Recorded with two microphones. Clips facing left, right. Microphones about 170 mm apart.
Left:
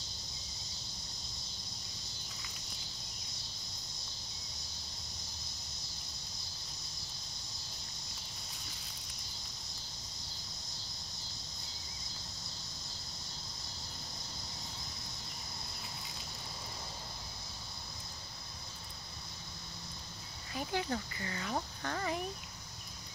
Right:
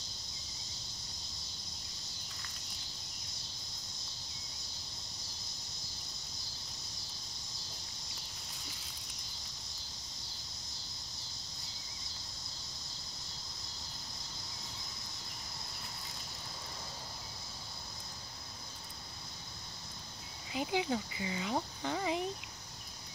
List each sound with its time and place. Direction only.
20.5 s speech: 15° right (ahead or behind)